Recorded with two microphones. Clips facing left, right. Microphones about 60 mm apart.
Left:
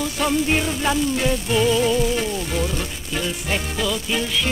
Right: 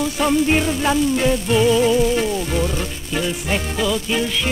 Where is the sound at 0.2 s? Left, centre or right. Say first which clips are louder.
Right 3 dB; centre.